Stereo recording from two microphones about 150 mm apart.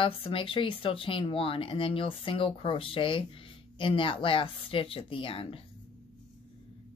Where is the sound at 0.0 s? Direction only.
35° left (ahead or behind).